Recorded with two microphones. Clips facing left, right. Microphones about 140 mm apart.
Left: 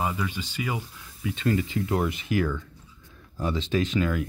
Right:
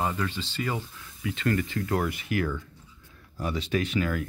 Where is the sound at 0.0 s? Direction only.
5° left (ahead or behind); by 2.4 s 20° left (ahead or behind).